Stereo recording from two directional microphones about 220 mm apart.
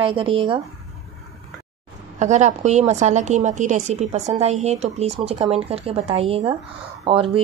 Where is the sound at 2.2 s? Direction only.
30° right (ahead or behind).